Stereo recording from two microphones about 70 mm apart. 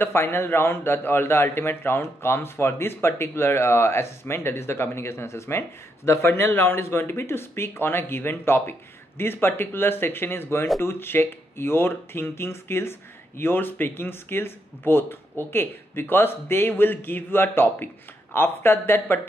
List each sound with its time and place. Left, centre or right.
0.0 s a man's voice: left